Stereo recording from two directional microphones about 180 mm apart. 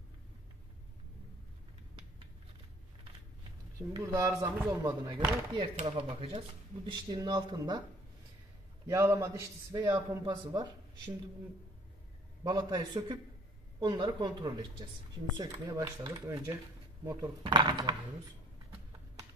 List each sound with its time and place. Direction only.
3.9 s a man's voice: 15° right (ahead or behind)
8.8 s a man's voice: 15° right (ahead or behind)
12.4 s a man's voice: 20° right (ahead or behind)
17.4 s a man's voice: 25° right (ahead or behind)